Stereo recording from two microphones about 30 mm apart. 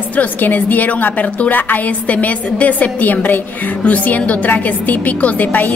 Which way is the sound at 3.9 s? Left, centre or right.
Left.